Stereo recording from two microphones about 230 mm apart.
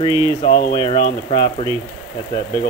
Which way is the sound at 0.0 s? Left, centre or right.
Centre.